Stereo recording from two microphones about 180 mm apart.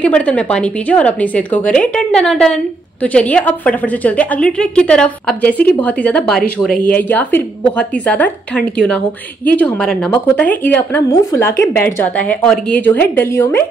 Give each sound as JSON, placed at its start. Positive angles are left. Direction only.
{"t": 0.0, "sound": "speech", "side_deg": 5}